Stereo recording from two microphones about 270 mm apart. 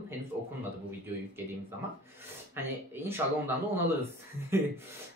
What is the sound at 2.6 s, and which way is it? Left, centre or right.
Speech, centre.